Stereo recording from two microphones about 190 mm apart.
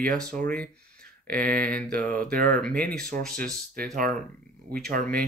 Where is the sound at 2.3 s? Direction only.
45° right (ahead or behind).